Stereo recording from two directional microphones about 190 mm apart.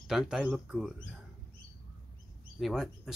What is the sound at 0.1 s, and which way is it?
Speech, centre (ahead or behind).